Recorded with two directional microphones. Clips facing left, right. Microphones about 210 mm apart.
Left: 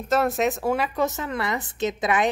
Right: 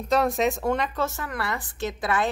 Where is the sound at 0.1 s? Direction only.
Centre (ahead or behind).